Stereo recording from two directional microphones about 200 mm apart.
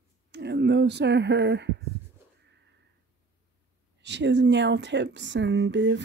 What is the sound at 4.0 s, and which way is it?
Speech, 60° right (ahead or behind).